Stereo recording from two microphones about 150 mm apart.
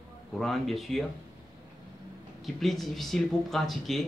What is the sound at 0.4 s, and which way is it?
Speech, centre (ahead or behind).